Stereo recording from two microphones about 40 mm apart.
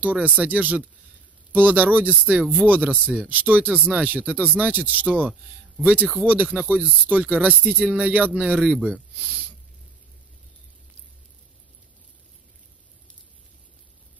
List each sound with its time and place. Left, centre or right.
0.0 s speech: right